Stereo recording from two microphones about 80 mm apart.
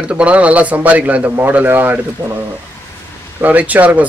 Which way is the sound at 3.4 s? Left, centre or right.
Centre.